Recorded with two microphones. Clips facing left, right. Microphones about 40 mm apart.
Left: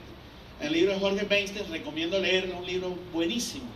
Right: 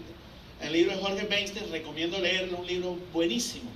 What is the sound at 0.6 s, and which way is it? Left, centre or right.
A man's voice, left.